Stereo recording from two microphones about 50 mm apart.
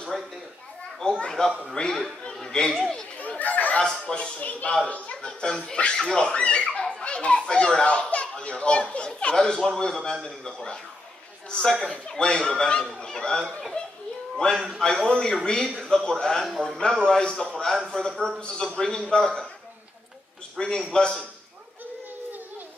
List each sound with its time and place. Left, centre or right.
0.1 s a man's voice: centre
1.0 s a man's voice: centre
3.2 s fowl: left
3.8 s speech: centre
5.2 s a man's voice: centre
20.5 s a man's voice: centre